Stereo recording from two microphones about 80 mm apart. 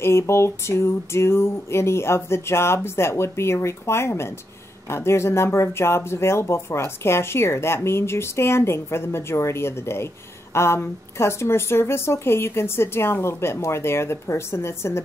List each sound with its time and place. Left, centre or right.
0.0 s speech: left